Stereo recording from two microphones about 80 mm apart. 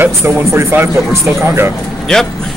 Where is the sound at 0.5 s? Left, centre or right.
Right.